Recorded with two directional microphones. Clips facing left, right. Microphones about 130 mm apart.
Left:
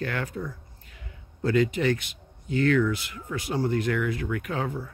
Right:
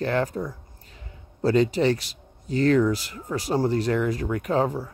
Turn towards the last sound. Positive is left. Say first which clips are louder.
# right 7 dB
turn(degrees=-35)  # may be behind; listen again after turning